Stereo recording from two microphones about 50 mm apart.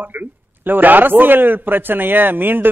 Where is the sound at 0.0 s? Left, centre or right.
Right.